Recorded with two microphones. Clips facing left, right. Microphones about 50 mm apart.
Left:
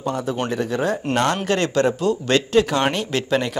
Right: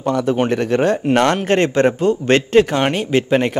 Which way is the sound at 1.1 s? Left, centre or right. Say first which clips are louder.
Right 4 dB; right.